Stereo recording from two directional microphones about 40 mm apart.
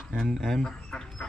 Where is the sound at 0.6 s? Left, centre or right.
Centre.